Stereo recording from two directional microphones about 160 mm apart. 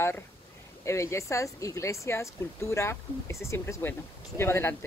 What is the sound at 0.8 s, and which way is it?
Speech, 20° left (ahead or behind).